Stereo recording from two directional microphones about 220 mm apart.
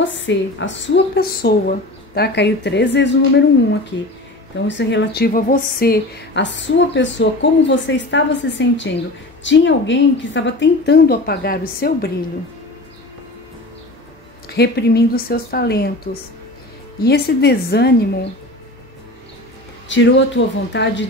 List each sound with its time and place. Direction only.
0.0 s a woman's voice: 55° left (ahead or behind)
4.6 s a woman's voice: 55° left (ahead or behind)
14.5 s a woman's voice: 50° left (ahead or behind)
17.0 s a woman's voice: 45° left (ahead or behind)
19.9 s a woman's voice: 55° left (ahead or behind)